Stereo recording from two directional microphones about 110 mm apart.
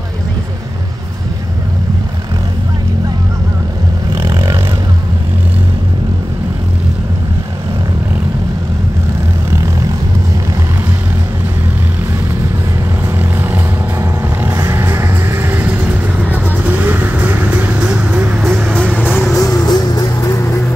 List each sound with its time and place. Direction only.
13.2 s vehicle: 20° right (ahead or behind)
18.9 s vehicle: 20° left (ahead or behind)
19.3 s music: 30° left (ahead or behind)